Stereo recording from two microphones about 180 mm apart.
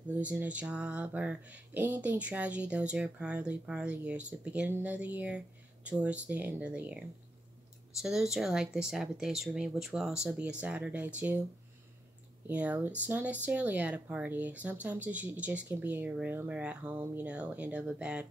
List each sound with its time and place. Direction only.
0.2 s speech: 5° right (ahead or behind)
12.4 s speech: 10° right (ahead or behind)